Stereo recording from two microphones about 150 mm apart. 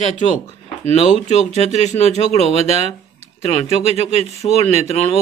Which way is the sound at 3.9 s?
45° left (ahead or behind).